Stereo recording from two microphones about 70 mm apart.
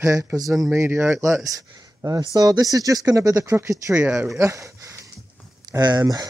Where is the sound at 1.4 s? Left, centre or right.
Right.